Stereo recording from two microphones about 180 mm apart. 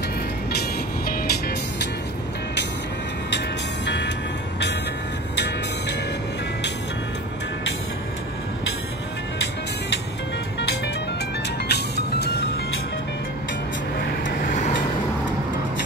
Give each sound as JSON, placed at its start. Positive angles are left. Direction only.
{"t": 3.3, "sound": "music", "side_deg": 75}
{"t": 5.3, "sound": "music", "side_deg": 70}
{"t": 11.7, "sound": "music", "side_deg": 65}